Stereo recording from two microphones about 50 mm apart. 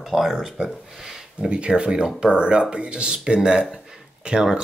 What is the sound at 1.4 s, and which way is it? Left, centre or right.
Speech, centre.